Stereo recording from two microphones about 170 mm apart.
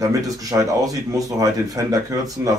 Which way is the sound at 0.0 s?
20° right (ahead or behind).